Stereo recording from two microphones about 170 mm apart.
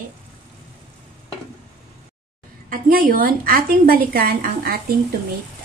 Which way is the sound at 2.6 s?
55° right (ahead or behind).